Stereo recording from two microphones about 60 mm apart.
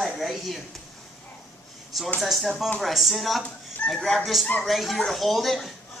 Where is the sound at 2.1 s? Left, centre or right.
Centre.